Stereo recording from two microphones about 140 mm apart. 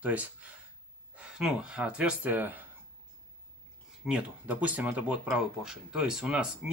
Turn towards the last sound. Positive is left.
turn(degrees=-5)  # may be behind; listen again after turning